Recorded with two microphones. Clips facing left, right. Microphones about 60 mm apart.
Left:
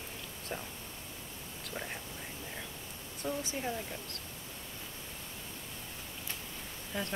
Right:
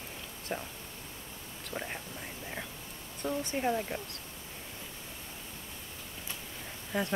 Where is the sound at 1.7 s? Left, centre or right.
Centre.